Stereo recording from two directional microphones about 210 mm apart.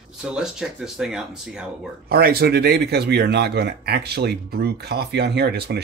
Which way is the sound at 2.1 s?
50° right (ahead or behind).